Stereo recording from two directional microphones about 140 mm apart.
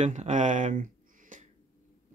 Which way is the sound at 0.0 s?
55° right (ahead or behind).